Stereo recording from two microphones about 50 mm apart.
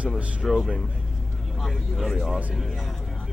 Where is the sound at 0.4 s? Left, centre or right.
Centre.